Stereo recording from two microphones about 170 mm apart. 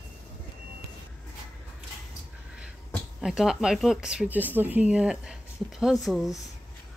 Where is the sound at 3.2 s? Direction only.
Centre (ahead or behind).